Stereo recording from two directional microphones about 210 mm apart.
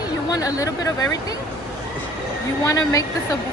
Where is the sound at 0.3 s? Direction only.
15° left (ahead or behind).